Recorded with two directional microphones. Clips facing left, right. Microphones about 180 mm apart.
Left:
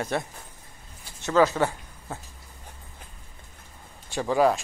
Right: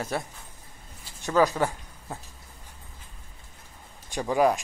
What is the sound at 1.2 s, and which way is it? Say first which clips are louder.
Speech: left 2 dB; 15° right (ahead or behind).